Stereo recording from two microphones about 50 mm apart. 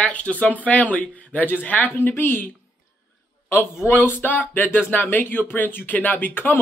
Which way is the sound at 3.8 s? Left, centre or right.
Left.